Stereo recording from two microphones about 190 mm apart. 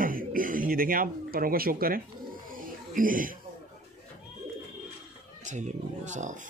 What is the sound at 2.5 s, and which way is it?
Music, 45° right (ahead or behind).